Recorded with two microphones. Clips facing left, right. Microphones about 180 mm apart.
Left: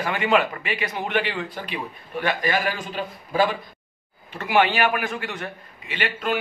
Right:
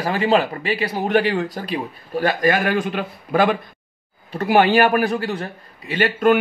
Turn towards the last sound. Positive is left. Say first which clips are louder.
# right 9 dB
turn(degrees=-45)  # may be behind; listen again after turning